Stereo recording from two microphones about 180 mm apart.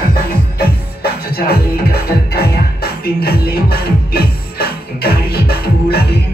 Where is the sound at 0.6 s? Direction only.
60° left (ahead or behind).